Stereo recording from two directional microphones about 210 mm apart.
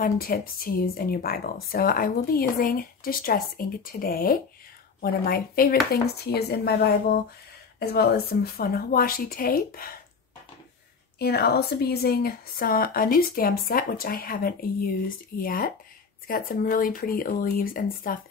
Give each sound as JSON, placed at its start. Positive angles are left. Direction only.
{"t": 0.0, "sound": "speech", "side_deg": 45}
{"t": 11.1, "sound": "speech", "side_deg": 50}